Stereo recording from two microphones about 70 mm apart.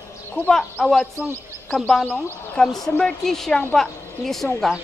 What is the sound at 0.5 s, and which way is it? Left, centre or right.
A woman's voice, centre.